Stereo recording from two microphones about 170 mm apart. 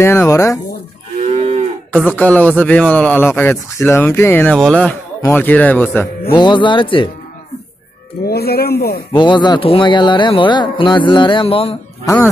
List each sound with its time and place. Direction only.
0.0 s a man's voice: 15° left (ahead or behind)
1.2 s moo: 35° right (ahead or behind)
2.0 s a man's voice: 10° left (ahead or behind)
6.3 s speech: 25° left (ahead or behind)
8.3 s speech: 65° left (ahead or behind)
9.1 s speech: 25° left (ahead or behind)